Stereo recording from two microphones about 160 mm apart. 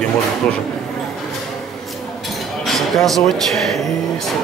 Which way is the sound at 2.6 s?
Centre (ahead or behind).